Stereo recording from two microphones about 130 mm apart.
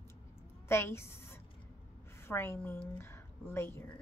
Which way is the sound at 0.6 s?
20° left (ahead or behind).